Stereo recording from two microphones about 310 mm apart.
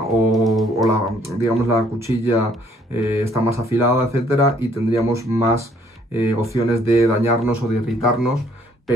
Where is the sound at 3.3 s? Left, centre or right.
Centre.